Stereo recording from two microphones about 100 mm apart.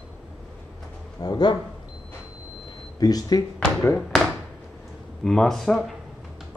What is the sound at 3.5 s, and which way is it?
Speech, 20° left (ahead or behind).